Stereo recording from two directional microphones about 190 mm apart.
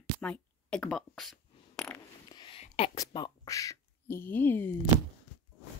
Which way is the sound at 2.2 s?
25° left (ahead or behind).